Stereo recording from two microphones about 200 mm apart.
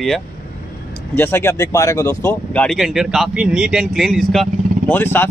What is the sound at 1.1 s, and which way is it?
Speech, 10° left (ahead or behind).